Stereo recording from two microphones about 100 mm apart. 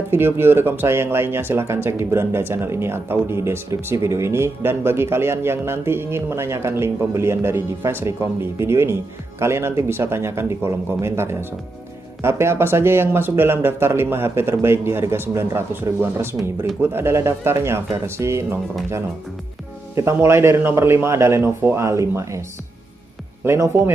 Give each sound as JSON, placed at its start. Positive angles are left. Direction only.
{"t": 0.1, "sound": "speech", "side_deg": -20}
{"t": 20.0, "sound": "speech", "side_deg": -25}
{"t": 23.4, "sound": "speech", "side_deg": -25}